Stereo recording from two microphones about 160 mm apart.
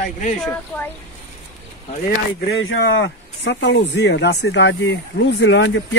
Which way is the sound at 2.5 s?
90° left.